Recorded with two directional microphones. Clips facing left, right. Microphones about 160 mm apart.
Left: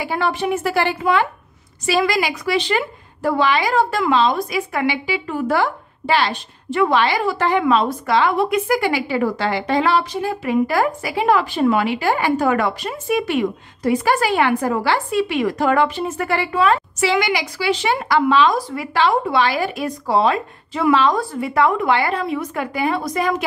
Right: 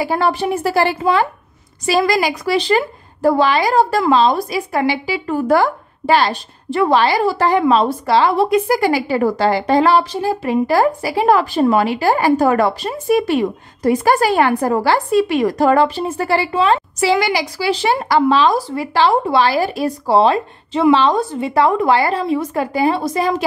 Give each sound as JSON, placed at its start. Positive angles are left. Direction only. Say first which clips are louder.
{"t": 0.0, "sound": "a woman's voice", "louder": "right 4 dB", "side_deg": -40}